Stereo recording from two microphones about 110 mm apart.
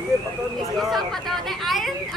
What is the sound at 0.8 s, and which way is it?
Speech, centre (ahead or behind).